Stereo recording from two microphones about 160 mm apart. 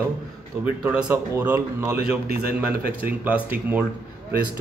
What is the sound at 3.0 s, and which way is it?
Speech, 10° right (ahead or behind).